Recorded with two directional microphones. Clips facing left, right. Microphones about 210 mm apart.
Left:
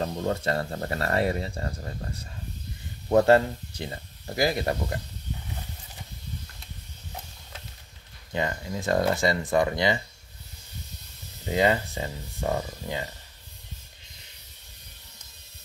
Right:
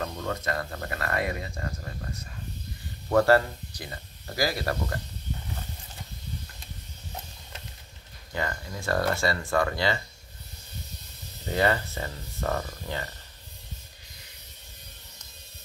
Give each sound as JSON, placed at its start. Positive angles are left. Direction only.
{"t": 0.0, "sound": "speech", "side_deg": 30}
{"t": 8.3, "sound": "speech", "side_deg": 20}
{"t": 11.4, "sound": "speech", "side_deg": 15}